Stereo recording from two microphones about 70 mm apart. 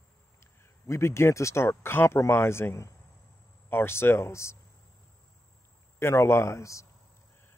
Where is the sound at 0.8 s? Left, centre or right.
Left.